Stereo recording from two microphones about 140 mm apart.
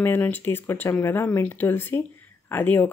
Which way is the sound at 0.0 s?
15° left (ahead or behind).